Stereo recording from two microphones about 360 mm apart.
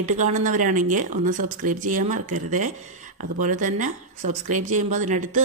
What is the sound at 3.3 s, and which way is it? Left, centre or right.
Speech, right.